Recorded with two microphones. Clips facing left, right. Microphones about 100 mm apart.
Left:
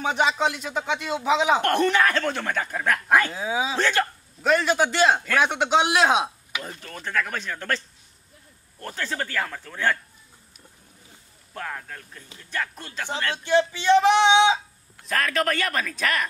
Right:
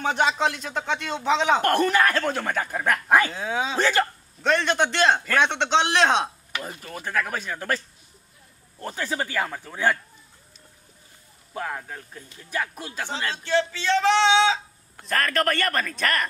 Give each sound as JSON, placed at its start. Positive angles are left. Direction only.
{"t": 0.0, "sound": "speech", "side_deg": 5}
{"t": 6.6, "sound": "speech", "side_deg": -5}
{"t": 11.5, "sound": "speech", "side_deg": -10}
{"t": 13.4, "sound": "speech", "side_deg": 15}
{"t": 15.0, "sound": "speech", "side_deg": 0}